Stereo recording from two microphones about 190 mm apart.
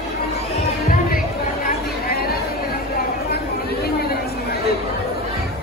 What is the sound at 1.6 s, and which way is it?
Chatter, 50° left (ahead or behind).